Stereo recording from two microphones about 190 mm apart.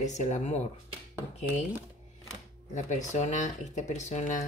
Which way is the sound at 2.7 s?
40° left (ahead or behind).